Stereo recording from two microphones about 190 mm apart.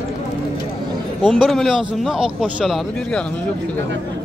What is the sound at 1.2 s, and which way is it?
Speech, centre (ahead or behind).